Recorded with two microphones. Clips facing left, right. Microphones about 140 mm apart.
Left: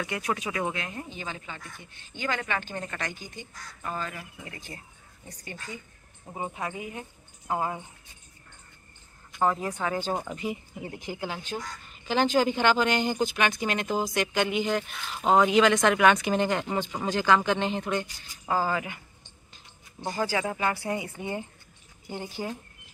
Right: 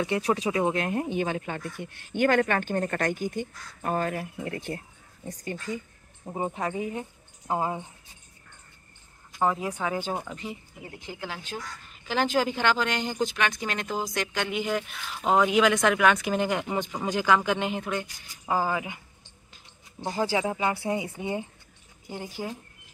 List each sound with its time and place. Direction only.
0.0 s speech: 30° right (ahead or behind)
0.7 s speech: 55° right (ahead or behind)
5.4 s speech: 40° right (ahead or behind); by 7.8 s 20° right (ahead or behind)
9.4 s speech: 10° right (ahead or behind)
10.1 s speech: 10° left (ahead or behind)
11.2 s speech: centre (ahead or behind); by 18.9 s 15° right (ahead or behind)
20.1 s speech: 20° right (ahead or behind)
22.4 s speech: centre (ahead or behind)